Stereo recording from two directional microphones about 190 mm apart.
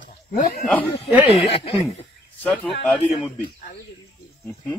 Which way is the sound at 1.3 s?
30° left (ahead or behind).